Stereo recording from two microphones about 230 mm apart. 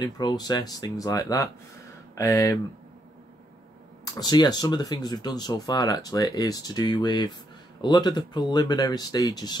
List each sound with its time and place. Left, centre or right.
0.0 s speech: centre
4.0 s speech: centre